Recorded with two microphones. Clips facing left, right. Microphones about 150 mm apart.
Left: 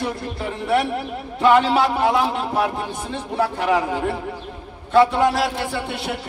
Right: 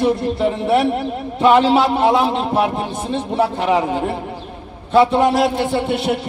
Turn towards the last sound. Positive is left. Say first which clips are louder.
# right 8 dB
turn(degrees=-20)  # may be behind; listen again after turning